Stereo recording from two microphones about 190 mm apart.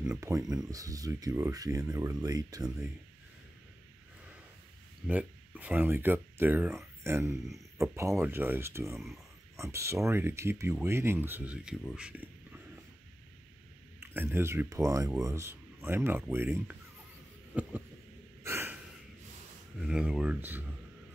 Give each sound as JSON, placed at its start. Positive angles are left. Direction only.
{"t": 0.1, "sound": "speech", "side_deg": -15}
{"t": 5.0, "sound": "speech", "side_deg": -5}
{"t": 8.9, "sound": "speech", "side_deg": 0}
{"t": 9.6, "sound": "speech", "side_deg": -15}
{"t": 14.1, "sound": "speech", "side_deg": -10}
{"t": 17.5, "sound": "a sound", "side_deg": -5}
{"t": 18.4, "sound": "breathing", "side_deg": -15}
{"t": 19.8, "sound": "speech", "side_deg": -5}